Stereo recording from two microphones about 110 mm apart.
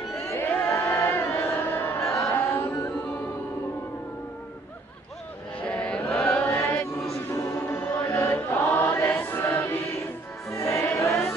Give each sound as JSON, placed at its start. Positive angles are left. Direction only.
{"t": 0.3, "sound": "a sound", "side_deg": 15}
{"t": 5.6, "sound": "chant", "side_deg": 10}
{"t": 7.0, "sound": "choir", "side_deg": 25}
{"t": 10.5, "sound": "music", "side_deg": 25}